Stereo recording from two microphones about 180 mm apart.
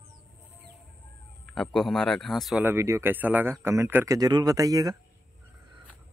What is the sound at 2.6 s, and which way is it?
A man's voice, 15° right (ahead or behind).